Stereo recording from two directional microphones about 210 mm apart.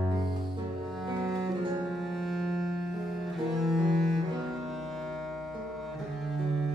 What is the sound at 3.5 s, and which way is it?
Cello, centre (ahead or behind).